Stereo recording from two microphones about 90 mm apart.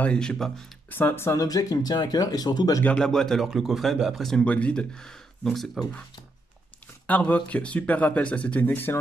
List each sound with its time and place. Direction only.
0.0 s speech: 10° left (ahead or behind)
0.8 s speech: 20° left (ahead or behind)
1.4 s speech: 40° left (ahead or behind)
3.0 s speech: 5° left (ahead or behind)
4.5 s speech: 15° left (ahead or behind)
7.1 s speech: 15° left (ahead or behind)